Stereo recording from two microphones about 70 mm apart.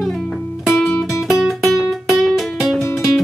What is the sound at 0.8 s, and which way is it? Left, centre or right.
Music, left.